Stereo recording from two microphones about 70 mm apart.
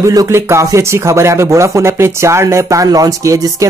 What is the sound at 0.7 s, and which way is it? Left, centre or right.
Speech, right.